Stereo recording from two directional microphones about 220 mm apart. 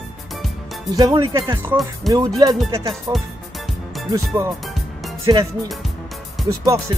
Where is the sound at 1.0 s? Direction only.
15° right (ahead or behind).